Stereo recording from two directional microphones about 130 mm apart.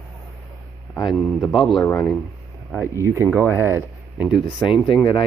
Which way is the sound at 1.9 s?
15° left (ahead or behind).